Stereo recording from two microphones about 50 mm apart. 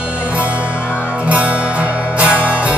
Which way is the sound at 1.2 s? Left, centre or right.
Right.